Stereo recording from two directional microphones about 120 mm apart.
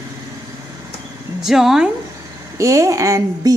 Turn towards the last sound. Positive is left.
turn(degrees=-25)  # may be behind; listen again after turning